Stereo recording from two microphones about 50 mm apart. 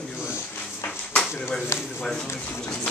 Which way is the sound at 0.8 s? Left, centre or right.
Left.